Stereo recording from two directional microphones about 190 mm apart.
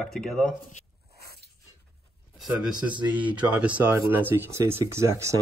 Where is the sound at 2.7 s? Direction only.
25° right (ahead or behind).